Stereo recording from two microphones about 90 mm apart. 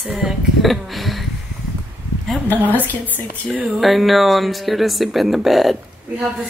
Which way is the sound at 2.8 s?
20° left (ahead or behind).